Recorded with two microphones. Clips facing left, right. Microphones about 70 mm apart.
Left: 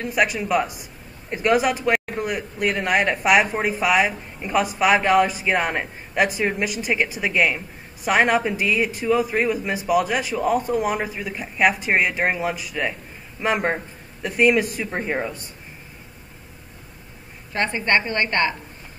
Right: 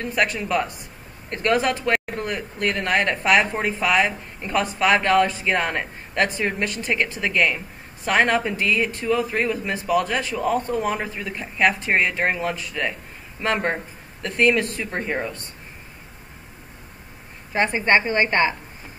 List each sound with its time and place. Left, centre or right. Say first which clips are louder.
0.0 s speech: left 1 dB; centre
17.5 s a woman's voice: right 2 dB; centre